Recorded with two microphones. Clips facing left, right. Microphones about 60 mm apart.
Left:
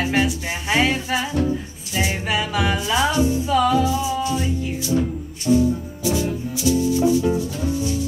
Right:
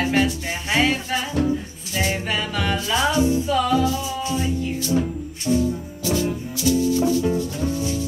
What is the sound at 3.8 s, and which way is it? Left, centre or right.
Music, centre.